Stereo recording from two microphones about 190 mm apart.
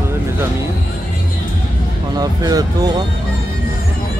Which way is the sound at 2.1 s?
20° right (ahead or behind).